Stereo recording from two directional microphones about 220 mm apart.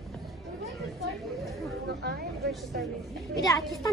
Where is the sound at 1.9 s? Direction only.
50° right (ahead or behind).